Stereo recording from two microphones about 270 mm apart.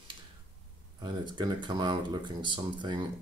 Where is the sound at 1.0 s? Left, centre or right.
Centre.